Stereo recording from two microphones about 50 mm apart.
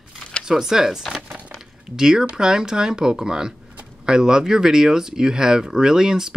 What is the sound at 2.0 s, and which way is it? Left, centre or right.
Speech, centre.